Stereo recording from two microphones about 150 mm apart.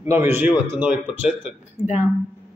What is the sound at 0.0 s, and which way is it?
A man's voice, 15° right (ahead or behind).